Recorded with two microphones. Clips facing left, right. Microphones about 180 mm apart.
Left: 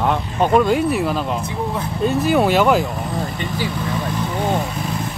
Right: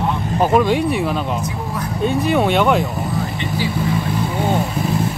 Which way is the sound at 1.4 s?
25° left (ahead or behind).